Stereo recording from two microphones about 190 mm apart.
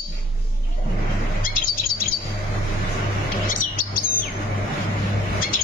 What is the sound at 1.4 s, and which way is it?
Chirp, 45° left (ahead or behind).